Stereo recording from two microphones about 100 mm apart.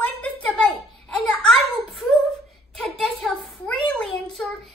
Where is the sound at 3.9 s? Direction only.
5° left (ahead or behind).